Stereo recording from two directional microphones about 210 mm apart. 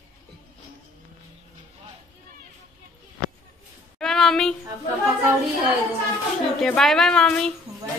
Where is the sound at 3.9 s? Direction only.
Centre (ahead or behind).